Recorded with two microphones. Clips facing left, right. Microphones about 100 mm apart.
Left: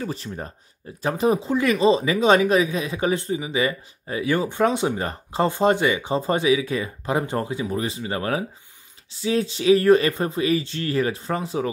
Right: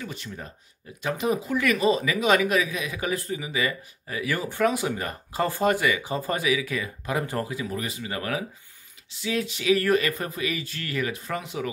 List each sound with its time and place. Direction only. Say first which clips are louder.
0.0 s speech: left 6 dB; 35° left (ahead or behind)